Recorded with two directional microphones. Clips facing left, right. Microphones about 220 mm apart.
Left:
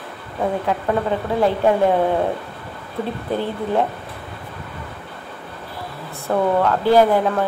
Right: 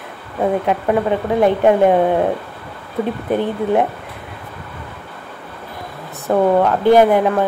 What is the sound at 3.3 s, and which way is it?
Speech, 15° right (ahead or behind).